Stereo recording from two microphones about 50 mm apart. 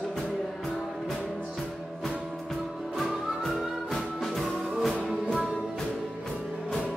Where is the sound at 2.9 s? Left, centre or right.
Centre.